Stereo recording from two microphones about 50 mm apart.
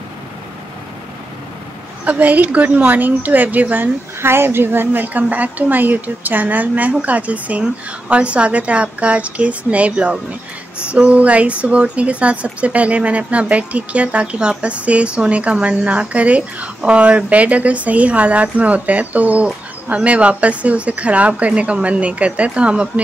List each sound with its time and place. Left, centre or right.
2.0 s a woman's voice: right
4.2 s a woman's voice: right